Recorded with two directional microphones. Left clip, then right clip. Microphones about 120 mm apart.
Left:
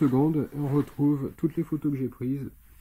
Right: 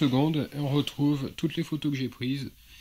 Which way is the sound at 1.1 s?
30° right (ahead or behind).